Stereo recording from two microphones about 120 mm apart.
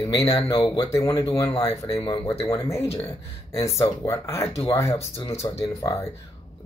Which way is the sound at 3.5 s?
25° left (ahead or behind).